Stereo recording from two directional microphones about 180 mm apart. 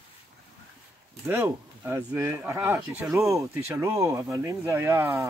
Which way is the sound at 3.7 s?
15° right (ahead or behind).